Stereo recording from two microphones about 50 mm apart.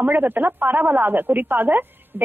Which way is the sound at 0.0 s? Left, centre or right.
Right.